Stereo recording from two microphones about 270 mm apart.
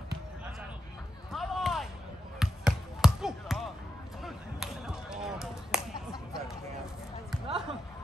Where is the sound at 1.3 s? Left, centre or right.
Centre.